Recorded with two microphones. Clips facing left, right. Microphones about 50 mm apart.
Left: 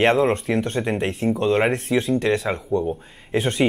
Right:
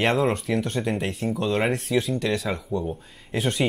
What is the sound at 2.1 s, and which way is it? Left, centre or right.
Speech, left.